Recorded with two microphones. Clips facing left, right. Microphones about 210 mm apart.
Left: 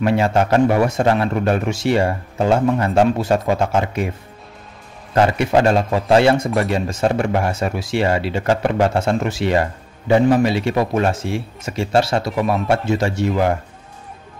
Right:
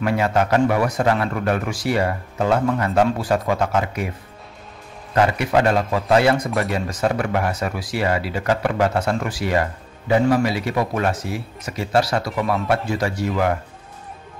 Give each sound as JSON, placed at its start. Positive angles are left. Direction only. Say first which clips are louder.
{"t": 0.0, "sound": "speech", "louder": "left 3 dB", "side_deg": 25}
{"t": 5.1, "sound": "speech", "louder": "left 3 dB", "side_deg": 25}